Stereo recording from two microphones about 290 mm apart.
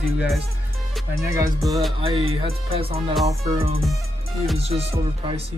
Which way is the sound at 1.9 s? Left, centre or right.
Centre.